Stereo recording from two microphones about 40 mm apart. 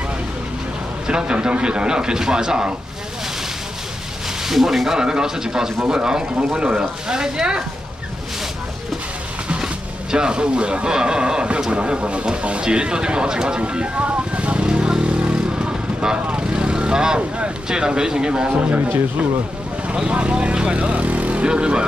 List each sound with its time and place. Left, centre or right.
1.0 s speech: right
4.5 s a man's voice: centre
4.9 s a man's voice: centre
10.1 s speech: right
13.6 s vehicle: right
17.6 s speech: right
18.8 s speech: right
20.1 s speech: right